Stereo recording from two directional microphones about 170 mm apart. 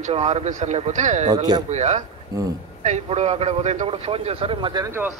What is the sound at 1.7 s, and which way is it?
Speech, 40° right (ahead or behind).